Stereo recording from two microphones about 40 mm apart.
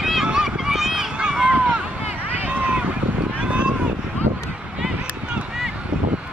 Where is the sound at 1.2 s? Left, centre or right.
Right.